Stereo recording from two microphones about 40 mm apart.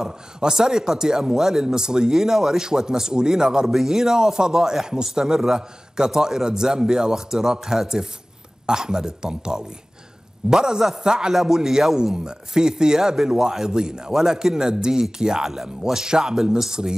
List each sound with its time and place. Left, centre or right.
0.0 s speech: centre